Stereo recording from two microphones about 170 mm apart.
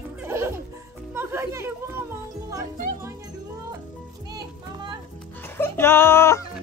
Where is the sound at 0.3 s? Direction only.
15° right (ahead or behind).